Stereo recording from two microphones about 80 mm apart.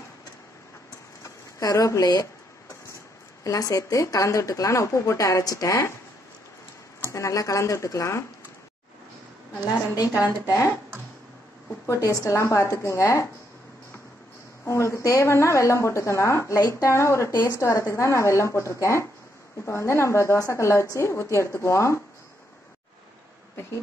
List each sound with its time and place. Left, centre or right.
1.2 s speech: left
3.4 s speech: left
7.1 s a woman's voice: left
10.4 s a woman's voice: left
11.8 s a woman's voice: left
14.6 s a woman's voice: left